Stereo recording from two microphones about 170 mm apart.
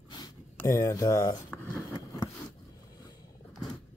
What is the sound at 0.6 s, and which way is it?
Speech, 20° left (ahead or behind).